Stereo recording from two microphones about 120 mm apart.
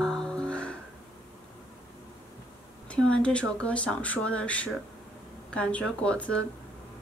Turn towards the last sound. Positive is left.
turn(degrees=10)  # may be behind; listen again after turning